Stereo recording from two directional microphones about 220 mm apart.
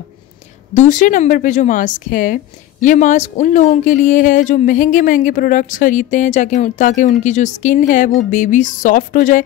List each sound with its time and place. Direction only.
0.7 s a woman's voice: 35° left (ahead or behind)